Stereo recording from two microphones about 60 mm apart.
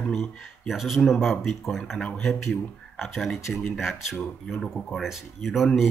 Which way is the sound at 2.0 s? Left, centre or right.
Centre.